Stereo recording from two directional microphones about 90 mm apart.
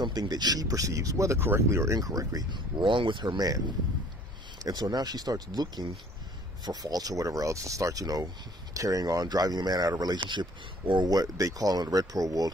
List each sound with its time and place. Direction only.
0.0 s speech: 50° right (ahead or behind); by 2.0 s 30° right (ahead or behind)
2.0 s speech: 45° right (ahead or behind)
2.5 s speech: 65° right (ahead or behind); by 3.6 s 45° right (ahead or behind)
4.6 s speech: 45° right (ahead or behind)
11.1 s speech: 40° right (ahead or behind)